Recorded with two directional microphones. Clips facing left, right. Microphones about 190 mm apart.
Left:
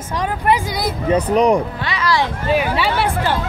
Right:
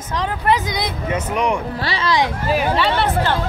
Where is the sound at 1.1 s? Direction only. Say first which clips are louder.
Left 7 dB; 35° left (ahead or behind).